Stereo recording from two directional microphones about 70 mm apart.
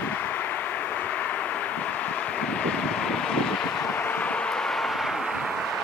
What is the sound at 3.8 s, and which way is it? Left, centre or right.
Vehicle, left.